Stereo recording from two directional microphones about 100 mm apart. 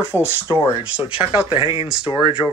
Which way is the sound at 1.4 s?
60° left (ahead or behind).